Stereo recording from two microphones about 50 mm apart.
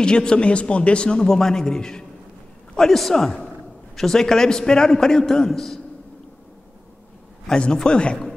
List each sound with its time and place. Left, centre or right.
0.0 s a man's voice: centre
7.5 s a man's voice: centre